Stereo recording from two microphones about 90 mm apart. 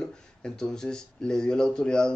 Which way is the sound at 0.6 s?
5° left (ahead or behind).